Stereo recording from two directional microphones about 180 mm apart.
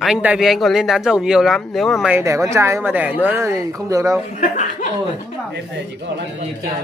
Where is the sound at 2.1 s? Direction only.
15° right (ahead or behind).